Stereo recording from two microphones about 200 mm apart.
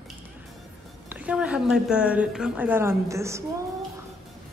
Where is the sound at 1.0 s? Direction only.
5° right (ahead or behind).